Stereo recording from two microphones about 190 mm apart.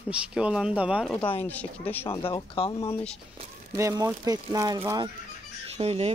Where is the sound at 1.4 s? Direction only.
10° left (ahead or behind).